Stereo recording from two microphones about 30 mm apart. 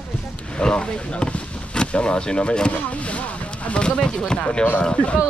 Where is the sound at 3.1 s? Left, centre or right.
Left.